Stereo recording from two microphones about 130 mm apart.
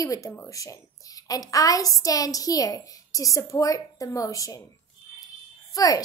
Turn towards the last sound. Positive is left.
turn(degrees=25)  # may be behind; listen again after turning